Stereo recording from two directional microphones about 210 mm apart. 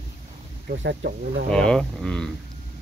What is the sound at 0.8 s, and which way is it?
Speech, 55° right (ahead or behind).